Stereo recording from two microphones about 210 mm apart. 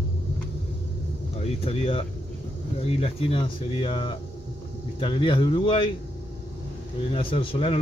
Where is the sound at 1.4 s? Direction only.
25° left (ahead or behind).